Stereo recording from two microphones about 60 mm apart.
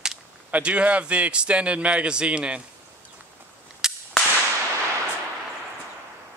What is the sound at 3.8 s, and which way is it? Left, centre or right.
Whip, centre.